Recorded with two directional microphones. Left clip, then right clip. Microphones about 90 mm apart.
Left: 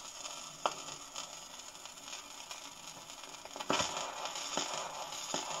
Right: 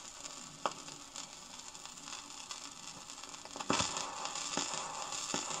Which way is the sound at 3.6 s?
30° right (ahead or behind).